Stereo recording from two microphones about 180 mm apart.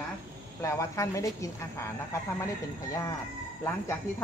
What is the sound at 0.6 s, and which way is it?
Speech, 15° left (ahead or behind).